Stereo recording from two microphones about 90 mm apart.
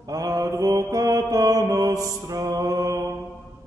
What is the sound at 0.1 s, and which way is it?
Mantra, 40° right (ahead or behind).